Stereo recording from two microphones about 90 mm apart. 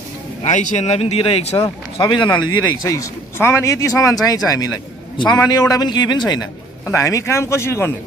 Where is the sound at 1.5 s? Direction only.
50° left (ahead or behind).